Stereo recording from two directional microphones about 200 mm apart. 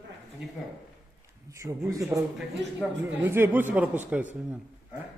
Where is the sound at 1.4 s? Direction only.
15° right (ahead or behind).